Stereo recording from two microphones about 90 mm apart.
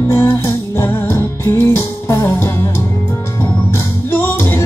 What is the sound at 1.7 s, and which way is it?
Music, 30° left (ahead or behind).